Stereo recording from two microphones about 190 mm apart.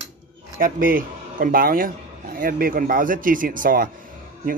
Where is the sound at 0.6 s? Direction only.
50° right (ahead or behind).